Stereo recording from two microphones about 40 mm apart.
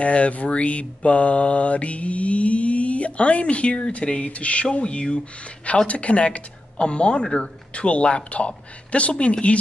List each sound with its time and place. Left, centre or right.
0.0 s mantra: left
4.7 s speech: left
5.9 s mantra: left